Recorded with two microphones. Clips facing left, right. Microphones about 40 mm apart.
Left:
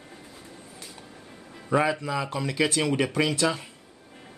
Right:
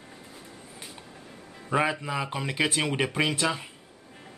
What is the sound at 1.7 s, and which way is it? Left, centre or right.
Speech, centre.